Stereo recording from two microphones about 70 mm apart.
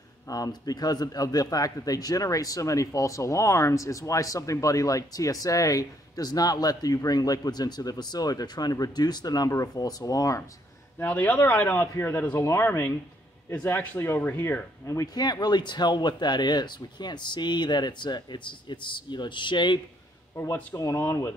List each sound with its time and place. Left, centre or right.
0.3 s a man's voice: left
9.5 s a man's voice: left
11.0 s speech: left
15.1 s speech: left
20.7 s speech: left